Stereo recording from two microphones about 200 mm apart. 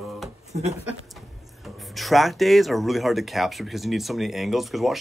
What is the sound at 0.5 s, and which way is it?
Speech, 40° right (ahead or behind).